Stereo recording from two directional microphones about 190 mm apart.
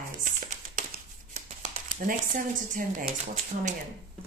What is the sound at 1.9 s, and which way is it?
Speech, 45° right (ahead or behind).